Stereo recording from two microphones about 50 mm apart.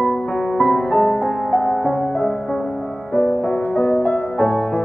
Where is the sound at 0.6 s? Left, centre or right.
Centre.